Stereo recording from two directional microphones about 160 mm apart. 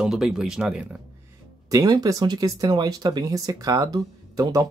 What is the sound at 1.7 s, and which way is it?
Speech, 25° right (ahead or behind).